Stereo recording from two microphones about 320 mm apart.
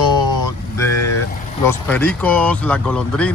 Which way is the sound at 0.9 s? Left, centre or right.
Left.